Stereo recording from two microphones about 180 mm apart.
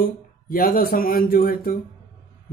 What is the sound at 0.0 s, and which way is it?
Speech, 55° left (ahead or behind).